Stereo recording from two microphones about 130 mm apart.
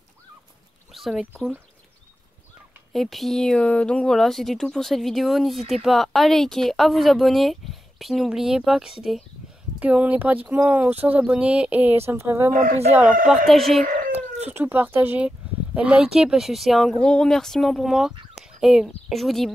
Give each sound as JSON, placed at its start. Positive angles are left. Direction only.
{"t": 0.9, "sound": "speech", "side_deg": 0}
{"t": 2.9, "sound": "speech", "side_deg": 0}
{"t": 13.5, "sound": "speech", "side_deg": 0}
{"t": 13.8, "sound": "cat", "side_deg": -90}
{"t": 14.5, "sound": "speech", "side_deg": -15}